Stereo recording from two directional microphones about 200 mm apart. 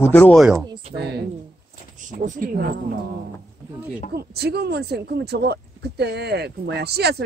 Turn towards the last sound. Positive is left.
turn(degrees=-55)  # may be behind; listen again after turning